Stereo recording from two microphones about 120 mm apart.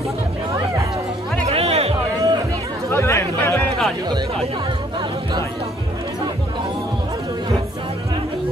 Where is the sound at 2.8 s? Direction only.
20° left (ahead or behind).